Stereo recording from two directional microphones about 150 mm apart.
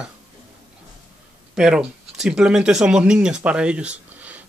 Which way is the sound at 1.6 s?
5° right (ahead or behind).